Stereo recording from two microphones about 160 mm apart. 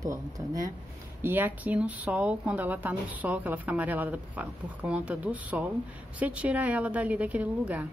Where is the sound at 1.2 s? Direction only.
10° right (ahead or behind).